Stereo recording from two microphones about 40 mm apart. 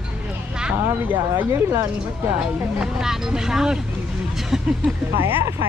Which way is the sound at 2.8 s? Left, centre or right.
Centre.